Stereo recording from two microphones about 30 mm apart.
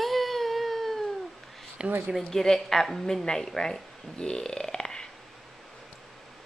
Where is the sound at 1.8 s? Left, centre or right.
Right.